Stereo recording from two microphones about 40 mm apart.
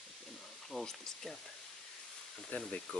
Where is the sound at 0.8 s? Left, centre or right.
Centre.